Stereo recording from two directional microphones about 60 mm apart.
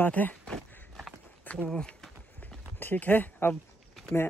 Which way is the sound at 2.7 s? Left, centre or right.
Left.